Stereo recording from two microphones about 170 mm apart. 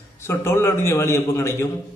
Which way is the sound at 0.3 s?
15° left (ahead or behind).